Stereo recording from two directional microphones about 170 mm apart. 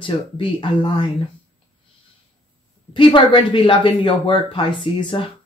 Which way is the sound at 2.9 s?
30° left (ahead or behind).